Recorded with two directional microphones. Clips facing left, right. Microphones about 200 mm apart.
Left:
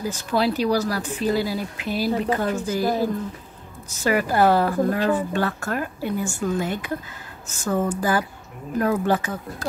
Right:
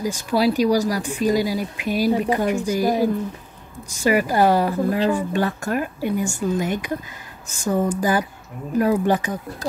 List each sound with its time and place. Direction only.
0.0 s speech: 10° right (ahead or behind)